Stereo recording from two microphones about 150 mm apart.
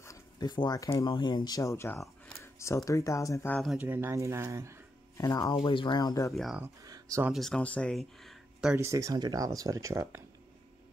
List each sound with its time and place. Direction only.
0.0 s a sound: 25° left (ahead or behind)
1.0 s speech: 30° left (ahead or behind)
3.7 s speech: 15° right (ahead or behind)
5.1 s speech: 20° left (ahead or behind)
5.6 s speech: 35° left (ahead or behind)
6.3 s speech: centre (ahead or behind)
6.6 s speech: 20° right (ahead or behind)
7.3 s speech: 5° left (ahead or behind)
8.7 s speech: 20° right (ahead or behind)